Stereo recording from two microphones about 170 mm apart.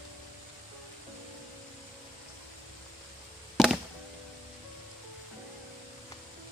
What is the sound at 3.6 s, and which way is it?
Music, centre (ahead or behind).